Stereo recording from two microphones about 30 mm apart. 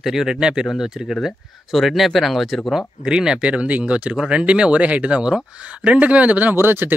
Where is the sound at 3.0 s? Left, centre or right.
Right.